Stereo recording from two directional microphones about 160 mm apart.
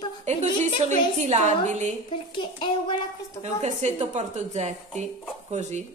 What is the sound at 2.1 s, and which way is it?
Speech, 30° left (ahead or behind).